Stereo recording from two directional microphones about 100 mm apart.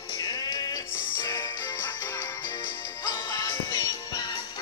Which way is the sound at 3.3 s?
35° left (ahead or behind).